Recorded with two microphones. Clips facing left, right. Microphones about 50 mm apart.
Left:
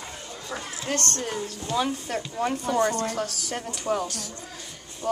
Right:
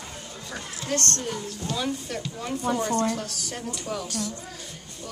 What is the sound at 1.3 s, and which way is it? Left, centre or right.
Speech, left.